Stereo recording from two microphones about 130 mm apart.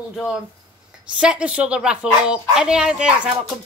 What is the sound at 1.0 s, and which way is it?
Speech, 10° right (ahead or behind).